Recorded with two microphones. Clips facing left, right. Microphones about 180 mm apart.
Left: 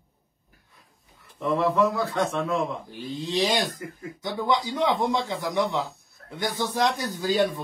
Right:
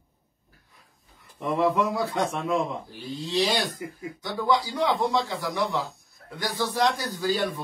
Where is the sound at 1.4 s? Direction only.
15° right (ahead or behind).